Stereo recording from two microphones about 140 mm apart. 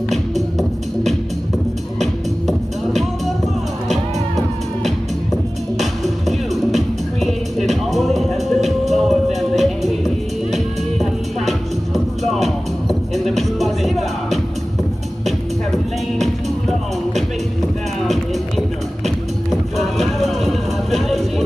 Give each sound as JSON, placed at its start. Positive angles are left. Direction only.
{"t": 2.4, "sound": "music", "side_deg": 0}
{"t": 19.0, "sound": "music", "side_deg": 0}